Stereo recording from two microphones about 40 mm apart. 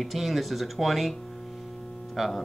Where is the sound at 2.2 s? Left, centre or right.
Centre.